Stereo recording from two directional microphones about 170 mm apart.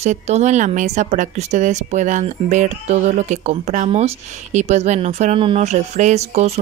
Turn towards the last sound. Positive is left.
turn(degrees=-40)  # may be behind; listen again after turning